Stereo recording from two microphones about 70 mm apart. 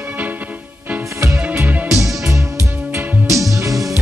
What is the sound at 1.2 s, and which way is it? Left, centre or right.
Music, right.